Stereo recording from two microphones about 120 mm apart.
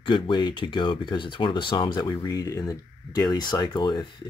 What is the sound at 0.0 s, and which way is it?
Speech, 40° left (ahead or behind).